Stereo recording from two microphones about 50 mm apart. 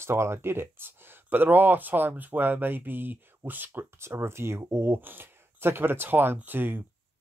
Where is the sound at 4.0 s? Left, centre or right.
Right.